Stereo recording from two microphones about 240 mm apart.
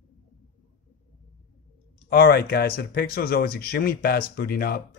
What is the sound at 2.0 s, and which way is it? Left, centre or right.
Speech, left.